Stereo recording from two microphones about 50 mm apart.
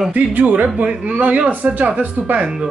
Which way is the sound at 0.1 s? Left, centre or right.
Right.